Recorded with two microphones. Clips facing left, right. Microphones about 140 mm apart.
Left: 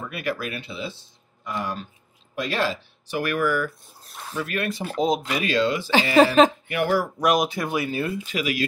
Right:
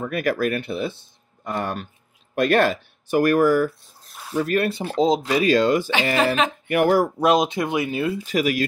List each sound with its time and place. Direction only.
0.1 s speech: 45° right (ahead or behind)
3.8 s speech: centre (ahead or behind)
4.4 s speech: 40° right (ahead or behind)
6.1 s a woman's voice: 40° left (ahead or behind)
6.7 s speech: 45° right (ahead or behind)
7.2 s speech: 25° right (ahead or behind)
8.3 s speech: 45° right (ahead or behind)